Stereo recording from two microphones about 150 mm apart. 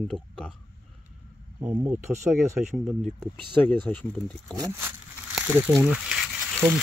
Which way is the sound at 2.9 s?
Centre (ahead or behind).